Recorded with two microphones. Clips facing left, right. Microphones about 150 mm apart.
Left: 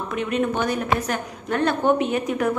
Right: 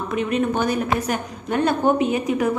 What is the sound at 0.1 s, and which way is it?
A woman's voice, centre (ahead or behind).